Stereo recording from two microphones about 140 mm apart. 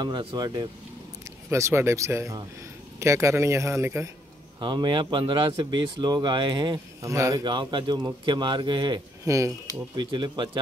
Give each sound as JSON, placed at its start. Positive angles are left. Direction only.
{"t": 0.0, "sound": "speech", "side_deg": -30}
{"t": 1.5, "sound": "a man's voice", "side_deg": -20}
{"t": 4.6, "sound": "speech", "side_deg": -35}
{"t": 7.4, "sound": "speech", "side_deg": -35}